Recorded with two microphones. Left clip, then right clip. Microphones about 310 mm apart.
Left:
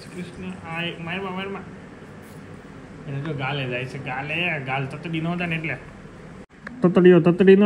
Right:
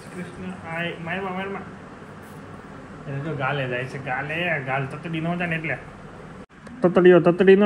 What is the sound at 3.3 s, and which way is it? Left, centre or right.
A man's voice, centre.